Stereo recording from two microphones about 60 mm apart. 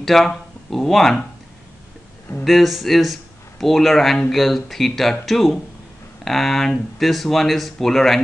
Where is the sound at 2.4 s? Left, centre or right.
Centre.